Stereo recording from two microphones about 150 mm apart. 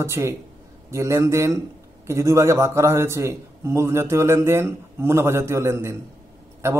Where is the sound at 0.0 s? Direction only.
20° right (ahead or behind).